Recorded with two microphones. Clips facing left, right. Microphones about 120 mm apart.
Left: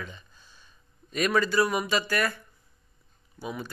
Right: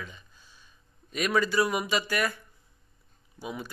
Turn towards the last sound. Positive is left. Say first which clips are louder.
# left 1 dB
turn(degrees=-10)  # may be behind; listen again after turning